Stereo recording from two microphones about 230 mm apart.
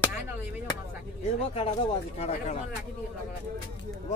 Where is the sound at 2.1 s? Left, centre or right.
Left.